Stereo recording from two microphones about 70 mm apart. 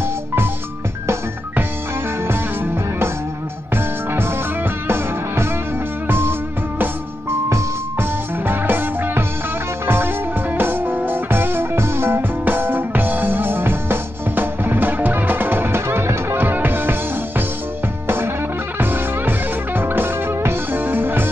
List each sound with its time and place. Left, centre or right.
2.2 s music: right
8.0 s music: right
18.0 s music: right